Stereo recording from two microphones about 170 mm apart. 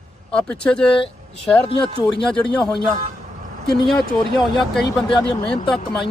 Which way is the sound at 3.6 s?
Centre (ahead or behind).